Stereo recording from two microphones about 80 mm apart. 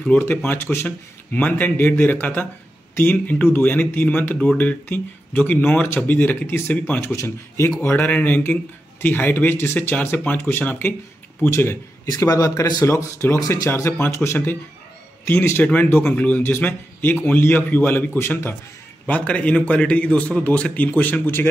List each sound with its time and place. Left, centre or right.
0.2 s speech: left
0.8 s speech: centre
7.0 s speech: left
7.8 s speech: left
11.5 s speech: left
12.1 s a man's voice: left
12.8 s speech: left
19.0 s a man's voice: centre